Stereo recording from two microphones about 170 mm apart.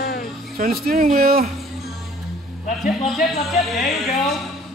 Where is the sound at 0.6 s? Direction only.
55° right (ahead or behind).